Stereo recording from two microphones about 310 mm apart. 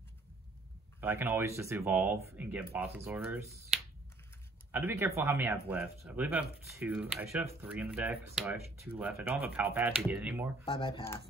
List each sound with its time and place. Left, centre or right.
1.0 s speech: centre
4.7 s speech: centre
10.8 s speech: centre